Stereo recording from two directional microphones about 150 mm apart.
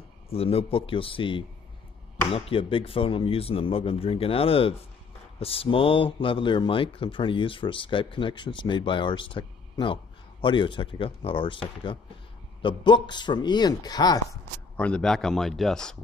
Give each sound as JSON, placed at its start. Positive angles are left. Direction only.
{"t": 0.3, "sound": "speech", "side_deg": 40}
{"t": 12.6, "sound": "speech", "side_deg": 30}
{"t": 14.8, "sound": "speech", "side_deg": 5}